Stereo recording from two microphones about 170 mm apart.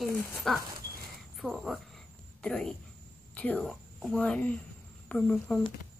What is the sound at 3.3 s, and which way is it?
A woman's voice, 5° left (ahead or behind).